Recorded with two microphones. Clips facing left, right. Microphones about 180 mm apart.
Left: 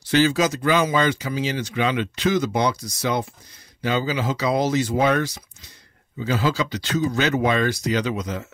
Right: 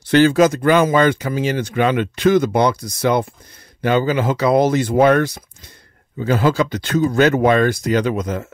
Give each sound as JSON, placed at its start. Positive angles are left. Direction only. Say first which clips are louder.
{"t": 0.0, "sound": "speech", "louder": "right 6 dB", "side_deg": -55}